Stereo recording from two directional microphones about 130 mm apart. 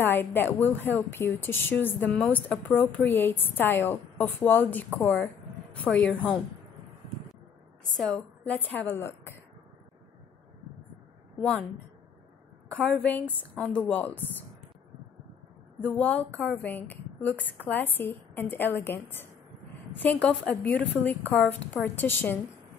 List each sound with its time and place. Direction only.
0.0 s a woman's voice: 15° left (ahead or behind)
7.9 s speech: 5° left (ahead or behind)
12.6 s speech: 5° left (ahead or behind)
15.8 s speech: 10° left (ahead or behind)